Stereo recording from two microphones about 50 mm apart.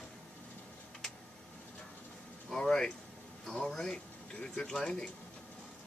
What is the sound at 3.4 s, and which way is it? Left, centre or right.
Speech, centre.